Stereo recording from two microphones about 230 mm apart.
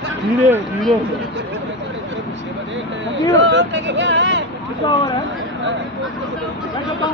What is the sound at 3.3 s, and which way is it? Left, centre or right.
Speech, right.